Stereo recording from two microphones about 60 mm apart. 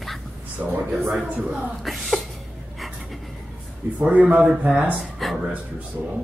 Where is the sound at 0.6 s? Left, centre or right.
Right.